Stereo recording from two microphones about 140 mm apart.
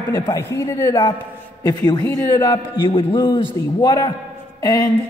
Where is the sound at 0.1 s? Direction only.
20° left (ahead or behind).